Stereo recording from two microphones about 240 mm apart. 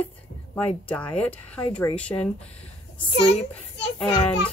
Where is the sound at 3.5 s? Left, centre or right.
Centre.